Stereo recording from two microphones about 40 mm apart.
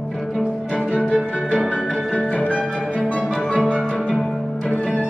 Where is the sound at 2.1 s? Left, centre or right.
Left.